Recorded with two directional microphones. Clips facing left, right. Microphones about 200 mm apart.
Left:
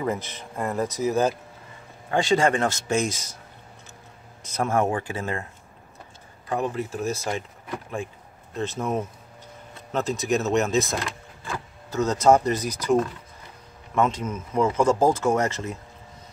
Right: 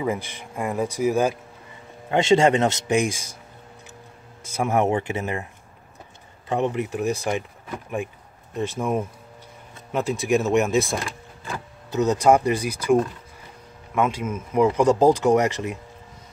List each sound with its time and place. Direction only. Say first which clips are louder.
0.0 s speech: right 2 dB; 10° right (ahead or behind)
2.0 s speech: right 4 dB; 25° right (ahead or behind)
4.4 s speech: right 2 dB; 10° right (ahead or behind)
6.5 s speech: right 3 dB; 20° right (ahead or behind)
8.5 s speech: right 2 dB; 10° right (ahead or behind)